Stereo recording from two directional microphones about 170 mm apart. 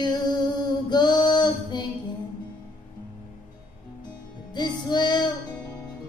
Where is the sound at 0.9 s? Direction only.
25° left (ahead or behind).